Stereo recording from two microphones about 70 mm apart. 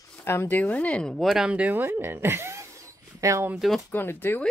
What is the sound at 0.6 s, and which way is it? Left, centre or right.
Speech, left.